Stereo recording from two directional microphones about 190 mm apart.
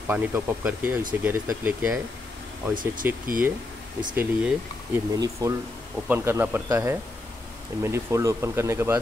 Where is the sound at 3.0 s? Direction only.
10° right (ahead or behind).